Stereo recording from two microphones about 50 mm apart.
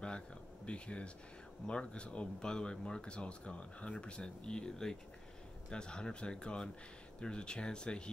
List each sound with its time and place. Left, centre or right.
0.7 s speech: left